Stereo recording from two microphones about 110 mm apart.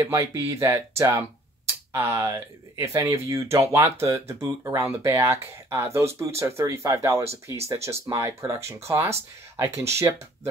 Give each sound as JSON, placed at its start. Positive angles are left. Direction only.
{"t": 0.0, "sound": "speech", "side_deg": -25}